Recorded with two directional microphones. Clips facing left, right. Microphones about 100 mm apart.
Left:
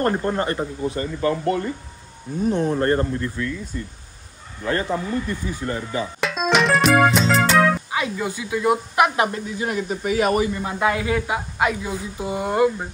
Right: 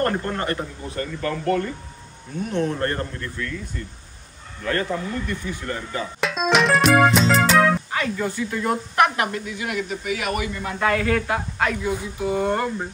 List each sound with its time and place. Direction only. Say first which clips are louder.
0.0 s speech: left 2 dB; 20° left (ahead or behind)
2.5 s speech: left 3 dB; 30° left (ahead or behind)
6.2 s music: even; centre (ahead or behind)
7.9 s a woman's voice: even; 10° left (ahead or behind)
9.6 s speech: left 5 dB; 35° left (ahead or behind)
10.5 s a woman's voice: left 1 dB; 20° left (ahead or behind)
11.8 s speech: right 3 dB; 25° left (ahead or behind)
12.4 s a woman's voice: left 5 dB; 10° left (ahead or behind)